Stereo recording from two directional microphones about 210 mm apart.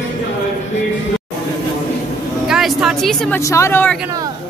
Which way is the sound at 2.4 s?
Centre (ahead or behind).